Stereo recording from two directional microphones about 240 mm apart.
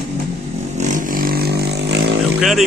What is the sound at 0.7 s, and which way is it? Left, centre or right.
Vehicle, right.